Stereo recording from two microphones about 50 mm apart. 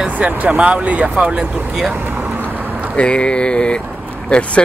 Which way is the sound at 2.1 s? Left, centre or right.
Right.